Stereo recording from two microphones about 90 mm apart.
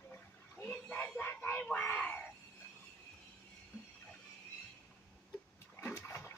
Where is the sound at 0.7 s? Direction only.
15° left (ahead or behind).